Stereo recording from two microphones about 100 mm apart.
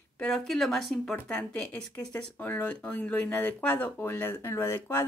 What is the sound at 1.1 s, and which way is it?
Speech, 15° left (ahead or behind).